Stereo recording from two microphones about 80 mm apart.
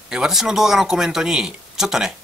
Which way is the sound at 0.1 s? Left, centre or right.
Centre.